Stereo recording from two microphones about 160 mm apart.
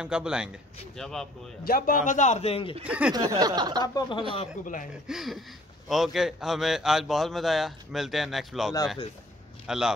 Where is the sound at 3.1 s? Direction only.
25° right (ahead or behind).